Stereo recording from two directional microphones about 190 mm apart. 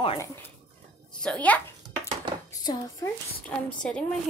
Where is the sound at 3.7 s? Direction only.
5° left (ahead or behind).